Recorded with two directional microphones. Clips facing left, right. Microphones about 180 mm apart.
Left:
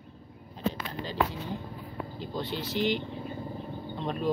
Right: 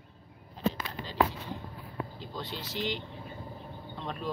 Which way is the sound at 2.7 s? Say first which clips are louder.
Left 6 dB; 60° left (ahead or behind).